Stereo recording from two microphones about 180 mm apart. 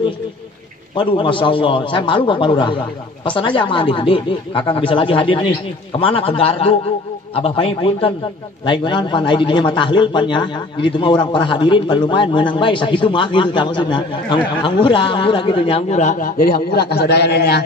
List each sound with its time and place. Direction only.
0.9 s a man's voice: 30° left (ahead or behind); by 17.6 s 65° left (ahead or behind)